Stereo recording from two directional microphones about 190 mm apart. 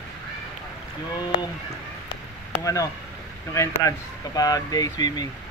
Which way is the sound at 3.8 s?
20° left (ahead or behind).